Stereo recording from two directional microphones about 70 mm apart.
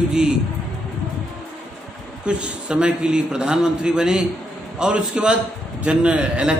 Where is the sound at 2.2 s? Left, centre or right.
Centre.